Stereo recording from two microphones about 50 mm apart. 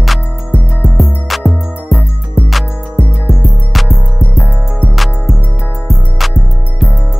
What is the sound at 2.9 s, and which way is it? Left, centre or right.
Music, right.